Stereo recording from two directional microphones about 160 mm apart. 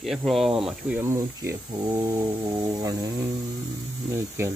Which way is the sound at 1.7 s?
25° right (ahead or behind).